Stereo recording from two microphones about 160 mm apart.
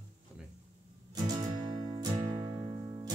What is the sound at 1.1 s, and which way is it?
Music, 25° right (ahead or behind).